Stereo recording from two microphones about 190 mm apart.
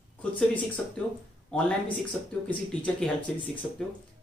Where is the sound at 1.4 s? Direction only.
5° left (ahead or behind).